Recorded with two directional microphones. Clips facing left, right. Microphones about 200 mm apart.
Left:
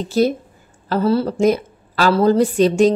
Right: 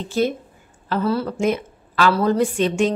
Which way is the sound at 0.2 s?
40° left (ahead or behind).